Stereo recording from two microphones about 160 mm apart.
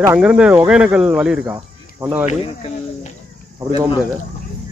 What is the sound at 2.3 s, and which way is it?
Speech, 35° left (ahead or behind).